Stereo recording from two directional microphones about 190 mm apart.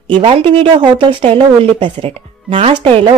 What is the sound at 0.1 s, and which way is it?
A woman's voice, 30° right (ahead or behind).